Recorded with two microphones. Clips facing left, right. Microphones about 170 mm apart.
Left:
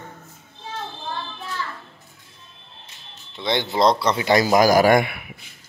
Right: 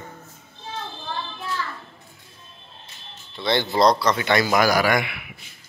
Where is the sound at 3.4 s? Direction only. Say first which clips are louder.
Right 1 dB; 15° left (ahead or behind); by 5.3 s 45° left (ahead or behind).